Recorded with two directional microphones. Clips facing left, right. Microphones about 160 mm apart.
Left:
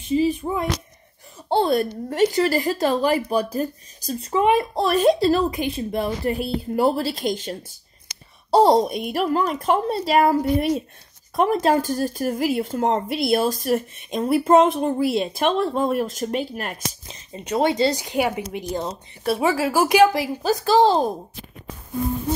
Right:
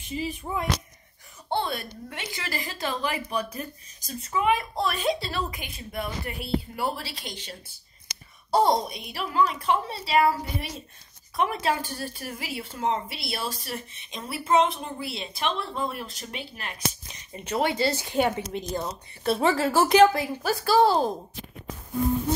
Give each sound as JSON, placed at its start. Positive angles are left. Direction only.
{"t": 0.1, "sound": "speech", "side_deg": 30}
{"t": 5.5, "sound": "speech", "side_deg": 30}
{"t": 6.4, "sound": "a woman's voice", "side_deg": 45}
{"t": 8.8, "sound": "speech", "side_deg": 50}
{"t": 17.0, "sound": "a sound", "side_deg": 25}
{"t": 17.5, "sound": "speech", "side_deg": 20}